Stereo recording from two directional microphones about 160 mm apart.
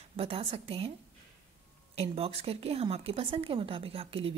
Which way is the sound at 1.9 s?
40° right (ahead or behind).